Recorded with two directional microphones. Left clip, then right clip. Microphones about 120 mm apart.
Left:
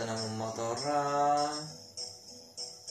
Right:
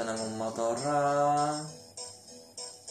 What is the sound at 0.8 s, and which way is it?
Speech, 15° right (ahead or behind).